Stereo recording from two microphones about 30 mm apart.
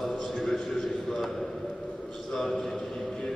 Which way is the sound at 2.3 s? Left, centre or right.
Centre.